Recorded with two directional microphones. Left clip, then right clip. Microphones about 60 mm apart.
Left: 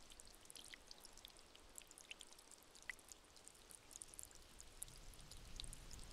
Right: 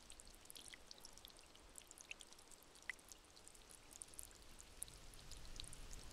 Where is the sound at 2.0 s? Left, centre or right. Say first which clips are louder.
Right 2 dB; centre.